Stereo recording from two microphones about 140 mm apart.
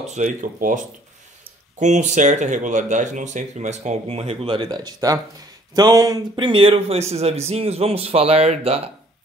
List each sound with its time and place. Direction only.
0.0 s speech: 60° right (ahead or behind)
1.8 s speech: 55° right (ahead or behind)